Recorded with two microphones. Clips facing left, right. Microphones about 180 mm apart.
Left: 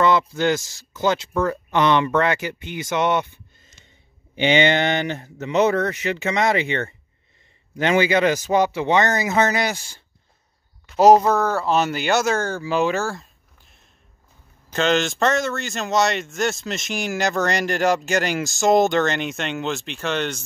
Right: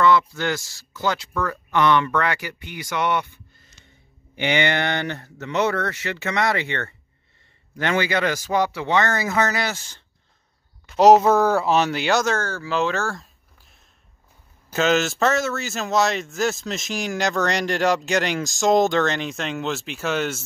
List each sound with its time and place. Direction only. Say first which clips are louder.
0.3 s speech: left 5 dB; 20° left (ahead or behind)
11.0 s speech: even; centre (ahead or behind)